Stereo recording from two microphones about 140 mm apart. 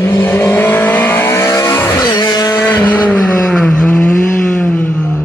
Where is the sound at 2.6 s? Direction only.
15° left (ahead or behind).